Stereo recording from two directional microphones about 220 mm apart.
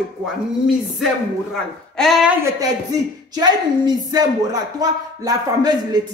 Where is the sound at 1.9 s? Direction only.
Centre (ahead or behind).